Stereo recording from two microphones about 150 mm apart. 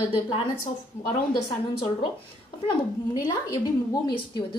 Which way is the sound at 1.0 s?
35° left (ahead or behind).